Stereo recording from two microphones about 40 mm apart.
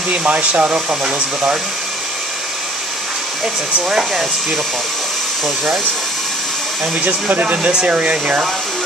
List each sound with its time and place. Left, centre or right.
0.2 s speech: right
1.0 s speech: right
7.0 s speech: right